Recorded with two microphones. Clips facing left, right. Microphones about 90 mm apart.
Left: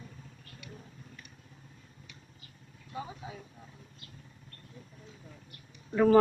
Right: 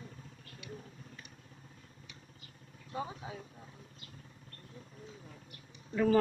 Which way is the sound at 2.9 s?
30° right (ahead or behind).